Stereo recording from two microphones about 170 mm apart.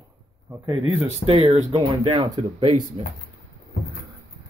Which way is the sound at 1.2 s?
35° right (ahead or behind).